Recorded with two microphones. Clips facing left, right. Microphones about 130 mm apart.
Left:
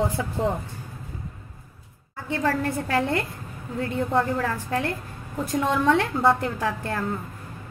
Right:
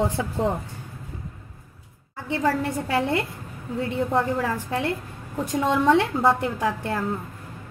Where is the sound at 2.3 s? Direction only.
20° right (ahead or behind).